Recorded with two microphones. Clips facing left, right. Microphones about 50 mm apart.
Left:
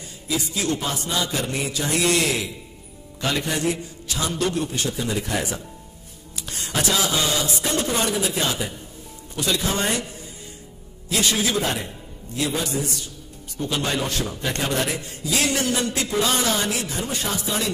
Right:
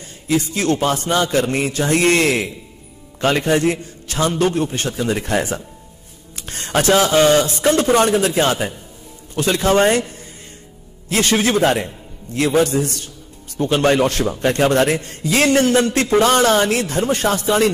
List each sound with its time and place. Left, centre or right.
0.3 s a man's voice: right
11.1 s a man's voice: right